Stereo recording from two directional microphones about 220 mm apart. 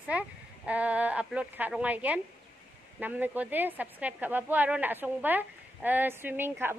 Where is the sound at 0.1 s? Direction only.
5° right (ahead or behind).